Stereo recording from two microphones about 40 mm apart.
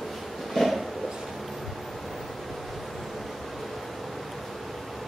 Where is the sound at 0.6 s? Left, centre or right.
Centre.